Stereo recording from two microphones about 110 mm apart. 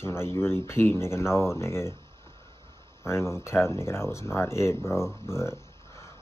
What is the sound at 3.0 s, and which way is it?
Speech, 25° left (ahead or behind).